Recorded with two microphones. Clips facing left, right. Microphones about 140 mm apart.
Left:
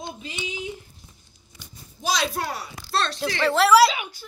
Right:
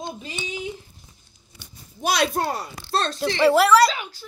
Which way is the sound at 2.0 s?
55° right (ahead or behind).